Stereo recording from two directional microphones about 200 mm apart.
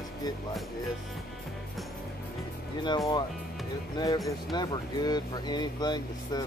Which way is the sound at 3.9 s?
20° left (ahead or behind).